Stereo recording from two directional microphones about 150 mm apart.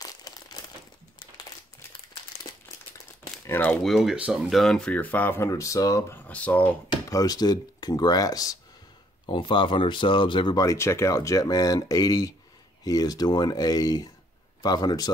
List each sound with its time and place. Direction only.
0.0 s crumpling: 25° left (ahead or behind)
3.4 s speech: 10° left (ahead or behind)
6.2 s speech: 10° left (ahead or behind)
6.9 s speech: 25° left (ahead or behind)